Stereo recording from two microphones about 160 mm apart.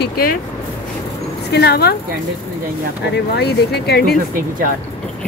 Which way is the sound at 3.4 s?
90° left.